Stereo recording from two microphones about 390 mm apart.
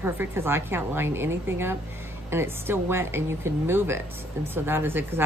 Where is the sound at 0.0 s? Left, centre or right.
Centre.